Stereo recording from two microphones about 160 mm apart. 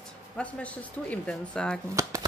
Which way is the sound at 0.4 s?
10° left (ahead or behind).